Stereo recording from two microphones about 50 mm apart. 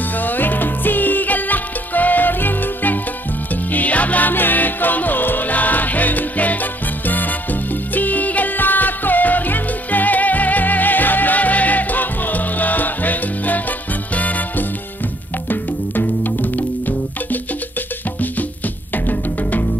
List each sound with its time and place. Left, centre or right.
0.2 s music: left
15.5 s music: left